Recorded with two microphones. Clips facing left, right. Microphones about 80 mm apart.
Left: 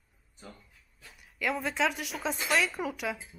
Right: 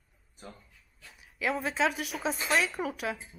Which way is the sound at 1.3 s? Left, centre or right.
Centre.